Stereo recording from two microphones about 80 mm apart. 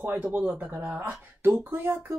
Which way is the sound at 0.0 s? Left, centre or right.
Centre.